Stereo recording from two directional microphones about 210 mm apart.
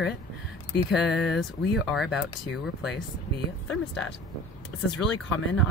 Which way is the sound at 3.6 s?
5° left (ahead or behind).